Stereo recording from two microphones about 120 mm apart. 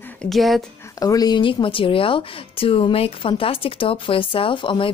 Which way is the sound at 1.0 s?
30° left (ahead or behind).